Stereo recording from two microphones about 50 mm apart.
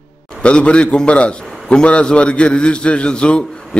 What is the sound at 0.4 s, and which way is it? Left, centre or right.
A man's voice, left.